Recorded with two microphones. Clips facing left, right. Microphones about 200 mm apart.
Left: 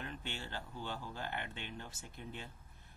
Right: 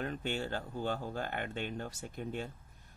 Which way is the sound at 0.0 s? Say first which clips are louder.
Right 9 dB; 50° right (ahead or behind).